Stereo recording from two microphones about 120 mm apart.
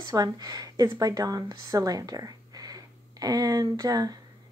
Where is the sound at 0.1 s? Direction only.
30° right (ahead or behind).